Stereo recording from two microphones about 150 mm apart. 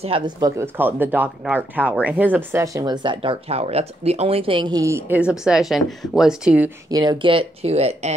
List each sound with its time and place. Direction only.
0.0 s speech: 40° right (ahead or behind)
0.4 s speech: 15° right (ahead or behind)
6.9 s speech: 25° right (ahead or behind); by 8.1 s 45° right (ahead or behind)